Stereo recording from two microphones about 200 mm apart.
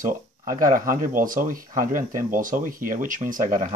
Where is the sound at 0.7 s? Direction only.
45° right (ahead or behind).